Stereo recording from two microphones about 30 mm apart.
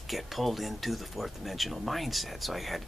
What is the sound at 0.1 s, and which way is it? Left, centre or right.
Speech, centre.